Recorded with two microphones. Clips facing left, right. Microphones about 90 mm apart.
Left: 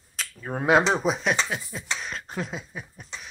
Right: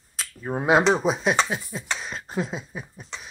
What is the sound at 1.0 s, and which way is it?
Speech, 5° right (ahead or behind).